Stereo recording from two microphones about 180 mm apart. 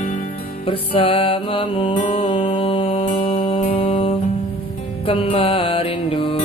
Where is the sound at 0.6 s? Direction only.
30° left (ahead or behind).